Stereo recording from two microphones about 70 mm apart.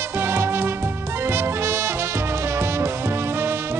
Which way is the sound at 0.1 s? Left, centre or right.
Right.